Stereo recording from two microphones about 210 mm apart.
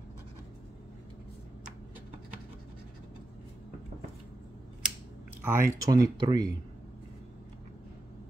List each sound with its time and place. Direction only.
5.4 s speech: 10° right (ahead or behind)